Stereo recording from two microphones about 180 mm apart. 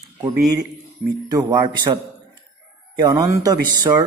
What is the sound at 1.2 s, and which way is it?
A man's voice, 20° right (ahead or behind).